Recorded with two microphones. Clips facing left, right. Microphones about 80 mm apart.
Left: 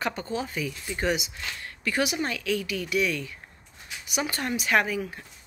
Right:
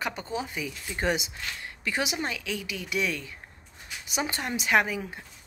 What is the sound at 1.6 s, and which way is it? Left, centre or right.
Speech, right.